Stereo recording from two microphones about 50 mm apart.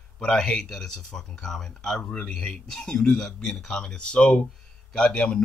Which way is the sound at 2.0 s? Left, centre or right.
Left.